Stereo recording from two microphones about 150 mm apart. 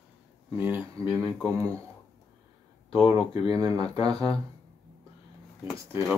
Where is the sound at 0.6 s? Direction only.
15° right (ahead or behind).